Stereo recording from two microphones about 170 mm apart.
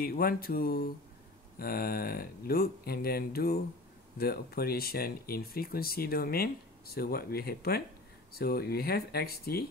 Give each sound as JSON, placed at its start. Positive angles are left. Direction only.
{"t": 0.0, "sound": "speech", "side_deg": 60}